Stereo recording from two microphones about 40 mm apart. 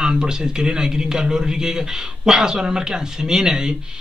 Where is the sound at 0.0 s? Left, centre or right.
Centre.